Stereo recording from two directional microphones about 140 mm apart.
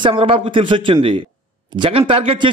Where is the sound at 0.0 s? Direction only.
40° right (ahead or behind).